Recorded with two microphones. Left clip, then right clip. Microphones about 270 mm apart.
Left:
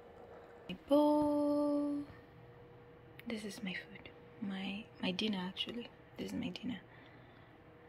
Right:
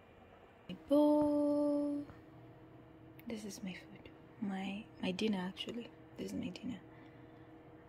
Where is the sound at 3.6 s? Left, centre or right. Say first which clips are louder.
Left 5 dB; centre.